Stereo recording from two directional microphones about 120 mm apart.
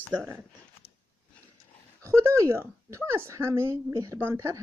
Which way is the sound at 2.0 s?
25° right (ahead or behind).